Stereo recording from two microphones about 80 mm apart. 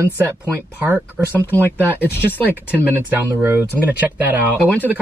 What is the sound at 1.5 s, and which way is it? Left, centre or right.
Speech, left.